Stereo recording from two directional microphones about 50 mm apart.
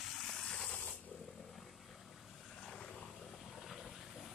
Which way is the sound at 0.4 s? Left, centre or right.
Centre.